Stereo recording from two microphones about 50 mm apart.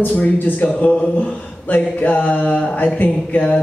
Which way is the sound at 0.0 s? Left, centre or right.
Left.